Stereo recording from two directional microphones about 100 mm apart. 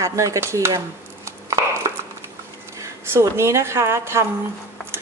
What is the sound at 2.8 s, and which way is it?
A woman's voice, 25° right (ahead or behind).